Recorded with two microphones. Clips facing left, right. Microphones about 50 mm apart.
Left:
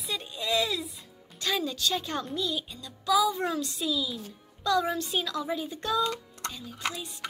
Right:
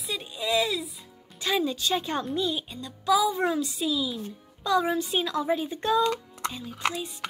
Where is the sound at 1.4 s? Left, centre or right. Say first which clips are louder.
Right 3 dB; centre.